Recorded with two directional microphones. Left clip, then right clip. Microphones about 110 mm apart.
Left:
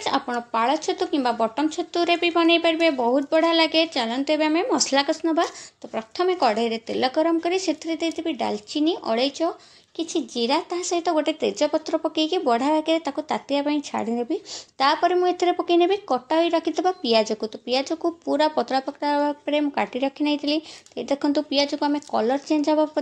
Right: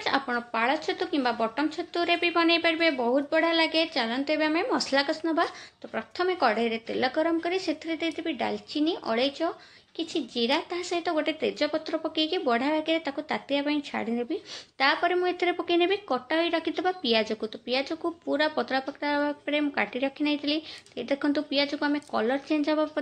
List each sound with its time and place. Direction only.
0.0 s a woman's voice: 45° left (ahead or behind)